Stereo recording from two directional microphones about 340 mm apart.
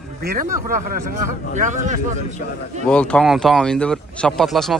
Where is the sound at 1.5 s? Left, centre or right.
Right.